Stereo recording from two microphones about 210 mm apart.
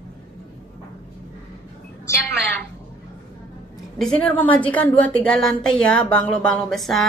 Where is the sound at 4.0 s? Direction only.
5° left (ahead or behind).